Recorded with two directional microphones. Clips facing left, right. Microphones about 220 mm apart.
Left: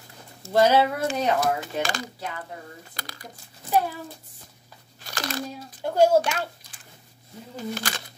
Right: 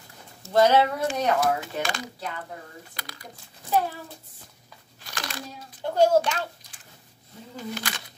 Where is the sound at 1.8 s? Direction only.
35° left (ahead or behind).